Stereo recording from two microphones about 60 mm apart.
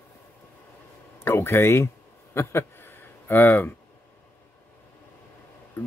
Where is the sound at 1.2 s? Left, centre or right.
Left.